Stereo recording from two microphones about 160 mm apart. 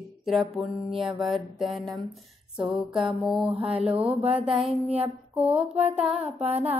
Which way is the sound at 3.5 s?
35° right (ahead or behind).